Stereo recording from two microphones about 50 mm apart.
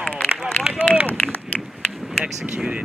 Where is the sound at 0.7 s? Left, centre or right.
Left.